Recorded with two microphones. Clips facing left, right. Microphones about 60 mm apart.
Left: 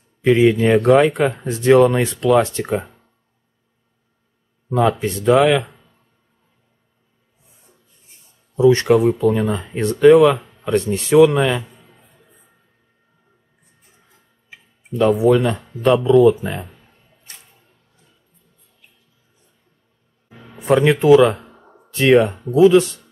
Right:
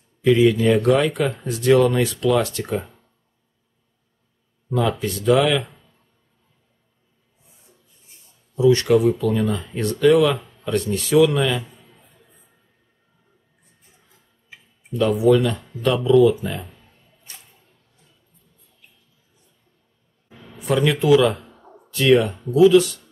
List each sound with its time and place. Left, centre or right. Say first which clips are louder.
0.2 s speech: left 2 dB; left
4.6 s speech: left 4 dB; left
8.5 s speech: left 3 dB; left
15.0 s speech: left 2 dB; left
20.2 s speech: left 6 dB; left